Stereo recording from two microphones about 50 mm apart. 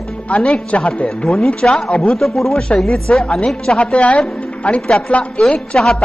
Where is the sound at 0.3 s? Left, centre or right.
Left.